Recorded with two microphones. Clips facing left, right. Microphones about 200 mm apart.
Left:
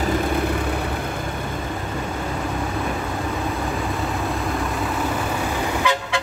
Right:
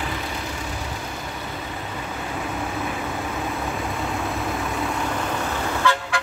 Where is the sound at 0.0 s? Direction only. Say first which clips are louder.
Left 9 dB; 50° left (ahead or behind).